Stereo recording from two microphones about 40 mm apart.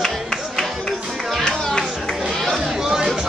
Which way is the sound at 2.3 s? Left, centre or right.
Centre.